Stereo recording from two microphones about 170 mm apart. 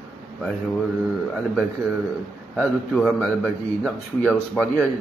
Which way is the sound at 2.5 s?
5° left (ahead or behind).